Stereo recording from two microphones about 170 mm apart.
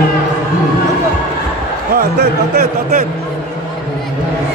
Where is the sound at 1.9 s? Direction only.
70° right (ahead or behind).